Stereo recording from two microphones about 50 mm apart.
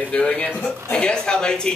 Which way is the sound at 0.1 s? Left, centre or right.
Centre.